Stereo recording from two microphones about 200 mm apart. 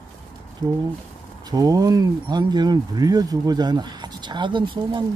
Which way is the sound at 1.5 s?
20° right (ahead or behind).